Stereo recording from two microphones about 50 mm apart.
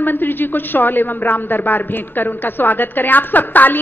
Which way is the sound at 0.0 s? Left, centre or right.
Left.